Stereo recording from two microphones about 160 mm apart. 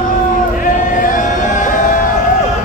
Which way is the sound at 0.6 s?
60° left (ahead or behind).